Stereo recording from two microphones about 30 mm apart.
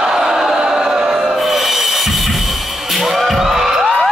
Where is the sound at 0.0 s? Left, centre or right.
Centre.